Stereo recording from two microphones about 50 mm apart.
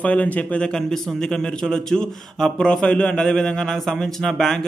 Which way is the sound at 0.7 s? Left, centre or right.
Centre.